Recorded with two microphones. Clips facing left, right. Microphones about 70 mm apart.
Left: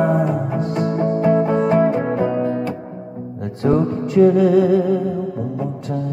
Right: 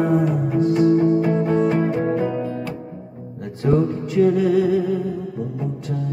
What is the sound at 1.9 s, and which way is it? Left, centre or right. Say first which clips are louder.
Music: left 2 dB; left.